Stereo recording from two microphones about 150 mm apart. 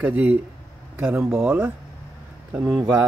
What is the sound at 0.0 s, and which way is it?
Speech, 10° right (ahead or behind).